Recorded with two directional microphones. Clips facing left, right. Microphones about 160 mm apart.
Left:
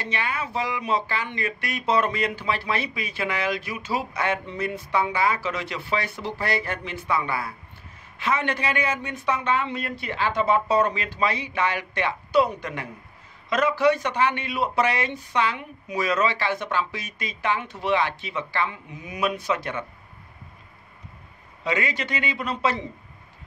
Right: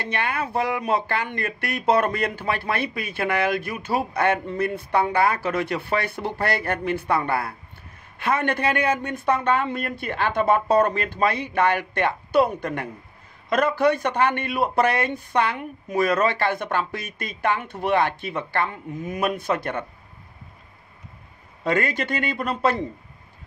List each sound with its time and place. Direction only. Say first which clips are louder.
0.0 s speech: right 3 dB; 55° right (ahead or behind)
21.6 s a man's voice: right 4 dB; 50° right (ahead or behind)